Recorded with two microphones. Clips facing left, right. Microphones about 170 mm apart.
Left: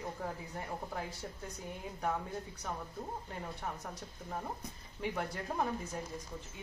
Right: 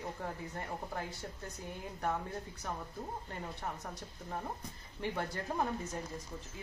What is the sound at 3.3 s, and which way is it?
A woman's voice, centre (ahead or behind).